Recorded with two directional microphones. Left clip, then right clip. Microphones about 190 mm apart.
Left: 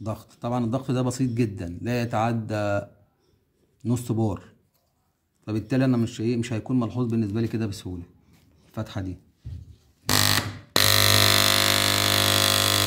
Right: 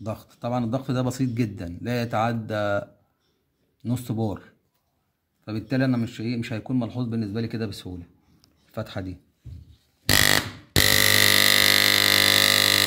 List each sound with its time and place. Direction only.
0.0 s speech: 30° right (ahead or behind)
3.8 s speech: 25° right (ahead or behind)
10.9 s pulse: 5° left (ahead or behind)